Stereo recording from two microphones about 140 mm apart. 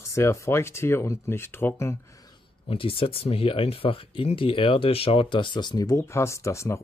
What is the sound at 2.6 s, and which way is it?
Speech, 40° left (ahead or behind).